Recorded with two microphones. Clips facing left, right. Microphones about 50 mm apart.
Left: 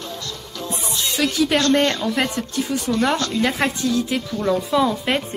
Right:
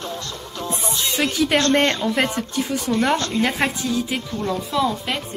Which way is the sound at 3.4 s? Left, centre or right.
Centre.